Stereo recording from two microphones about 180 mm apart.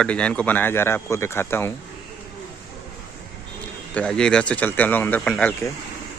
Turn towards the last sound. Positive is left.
turn(degrees=5)  # may be behind; listen again after turning